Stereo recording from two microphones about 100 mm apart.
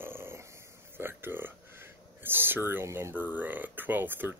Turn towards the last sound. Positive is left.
turn(degrees=-20)  # may be behind; listen again after turning